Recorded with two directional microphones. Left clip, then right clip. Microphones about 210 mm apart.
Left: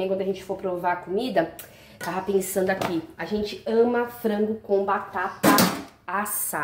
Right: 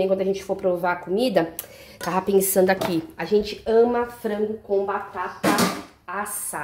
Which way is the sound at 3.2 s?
35° right (ahead or behind).